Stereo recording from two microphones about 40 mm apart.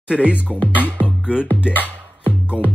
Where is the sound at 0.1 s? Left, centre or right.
Right.